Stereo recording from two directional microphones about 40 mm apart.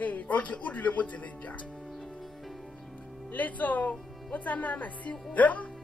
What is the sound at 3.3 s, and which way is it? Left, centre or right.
A woman's voice, left.